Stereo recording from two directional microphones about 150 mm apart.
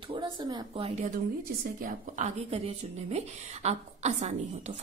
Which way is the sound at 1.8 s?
65° right (ahead or behind).